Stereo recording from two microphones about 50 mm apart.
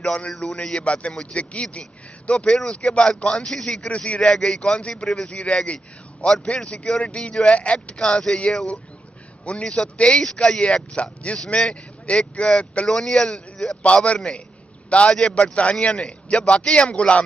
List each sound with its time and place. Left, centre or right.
0.3 s speech: centre
0.8 s speech: left
3.8 s speech: left
4.3 s a man's voice: centre